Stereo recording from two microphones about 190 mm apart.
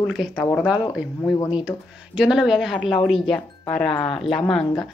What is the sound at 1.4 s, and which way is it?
Speech, 25° left (ahead or behind).